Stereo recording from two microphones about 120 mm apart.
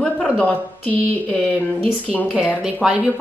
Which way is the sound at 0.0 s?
10° left (ahead or behind).